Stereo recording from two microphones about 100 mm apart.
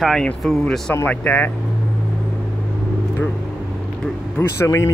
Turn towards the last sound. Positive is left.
turn(degrees=25)  # may be behind; listen again after turning